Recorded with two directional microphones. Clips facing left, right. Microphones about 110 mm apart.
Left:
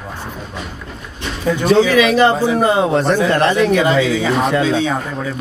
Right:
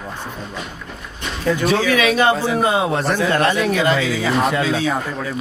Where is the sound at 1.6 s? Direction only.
Centre (ahead or behind).